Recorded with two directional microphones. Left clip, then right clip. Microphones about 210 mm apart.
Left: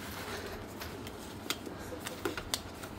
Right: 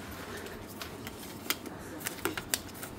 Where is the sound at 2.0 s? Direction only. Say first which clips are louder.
Right 3 dB; 5° right (ahead or behind).